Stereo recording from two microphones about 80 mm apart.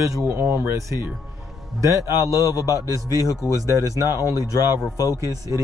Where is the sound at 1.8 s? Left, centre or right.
Right.